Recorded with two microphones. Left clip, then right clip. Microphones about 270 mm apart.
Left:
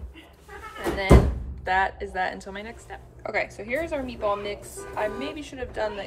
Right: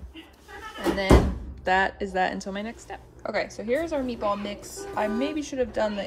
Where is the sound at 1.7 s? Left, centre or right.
Right.